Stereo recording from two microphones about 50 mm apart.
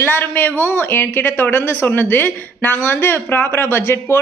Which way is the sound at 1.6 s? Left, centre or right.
Left.